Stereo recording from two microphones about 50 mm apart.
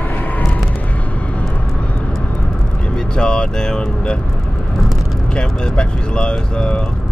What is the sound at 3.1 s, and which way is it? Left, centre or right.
Speech, centre.